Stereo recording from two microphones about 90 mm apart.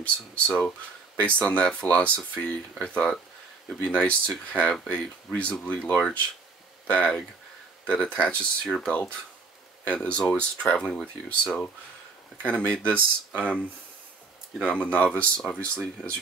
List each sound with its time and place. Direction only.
0.0 s speech: 15° left (ahead or behind)
10.9 s speech: 5° left (ahead or behind)
12.9 s speech: 20° right (ahead or behind)
14.6 s speech: 10° left (ahead or behind)